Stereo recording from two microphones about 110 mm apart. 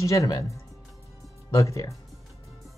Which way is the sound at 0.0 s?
30° left (ahead or behind).